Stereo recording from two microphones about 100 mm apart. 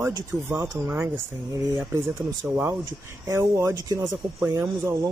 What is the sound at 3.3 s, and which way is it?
Speech, 30° right (ahead or behind).